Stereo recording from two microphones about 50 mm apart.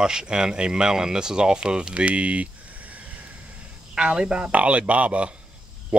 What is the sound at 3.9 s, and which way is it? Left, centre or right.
Speech, centre.